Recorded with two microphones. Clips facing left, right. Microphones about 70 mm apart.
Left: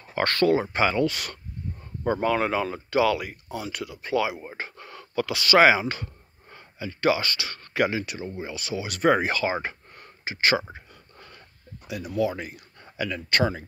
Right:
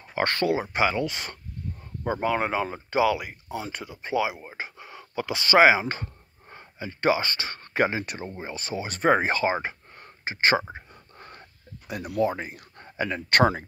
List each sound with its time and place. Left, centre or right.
0.1 s speech: centre
2.0 s speech: centre
4.4 s speech: centre; by 8.0 s right
8.0 s speech: right
9.7 s a sound: right
12.2 s speech: right
12.5 s a sound: right
13.3 s speech: right